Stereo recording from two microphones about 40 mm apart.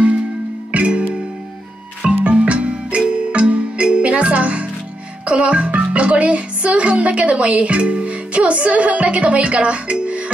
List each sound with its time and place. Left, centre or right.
0.7 s music: right